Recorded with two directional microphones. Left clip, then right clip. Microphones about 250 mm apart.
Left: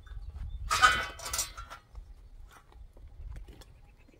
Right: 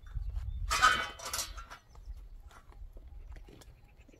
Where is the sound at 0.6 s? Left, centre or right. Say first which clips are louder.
Left 2 dB; centre.